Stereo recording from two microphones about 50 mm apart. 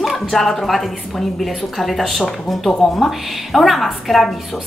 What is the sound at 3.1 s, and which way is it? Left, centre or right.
A woman's voice, centre.